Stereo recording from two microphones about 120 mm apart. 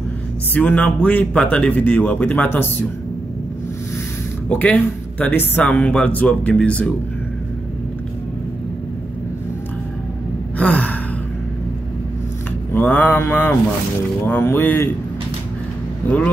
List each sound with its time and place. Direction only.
0.6 s speech: 10° left (ahead or behind)
4.5 s speech: 15° left (ahead or behind)
10.6 s gasp: 15° left (ahead or behind)
12.7 s mantra: 15° left (ahead or behind)
14.2 s speech: 20° left (ahead or behind)